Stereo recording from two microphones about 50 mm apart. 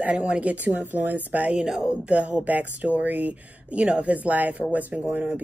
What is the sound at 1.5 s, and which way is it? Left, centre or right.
Speech, centre.